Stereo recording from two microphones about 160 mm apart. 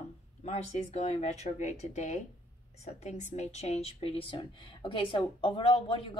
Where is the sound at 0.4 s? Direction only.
45° left (ahead or behind).